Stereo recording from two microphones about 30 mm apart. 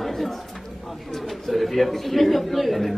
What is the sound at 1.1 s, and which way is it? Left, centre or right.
A man's voice, centre.